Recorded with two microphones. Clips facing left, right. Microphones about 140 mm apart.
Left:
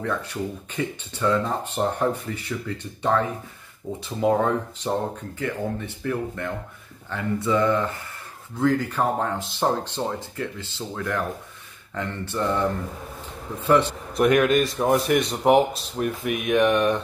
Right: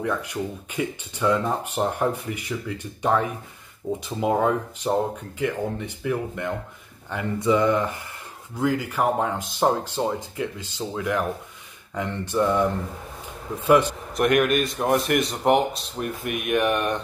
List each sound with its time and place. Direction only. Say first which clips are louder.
0.0 s speech: right 1 dB; 10° right (ahead or behind)
14.1 s a man's voice: left 2 dB; centre (ahead or behind)